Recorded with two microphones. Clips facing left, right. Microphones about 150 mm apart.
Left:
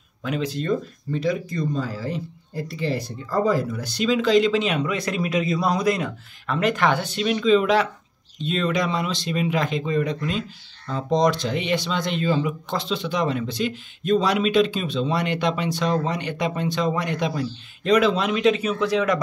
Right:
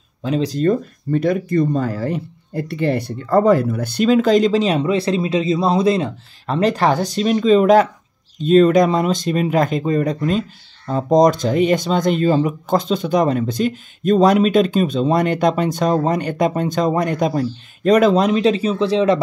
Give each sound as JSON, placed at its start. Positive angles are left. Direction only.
{"t": 0.2, "sound": "speech", "side_deg": -35}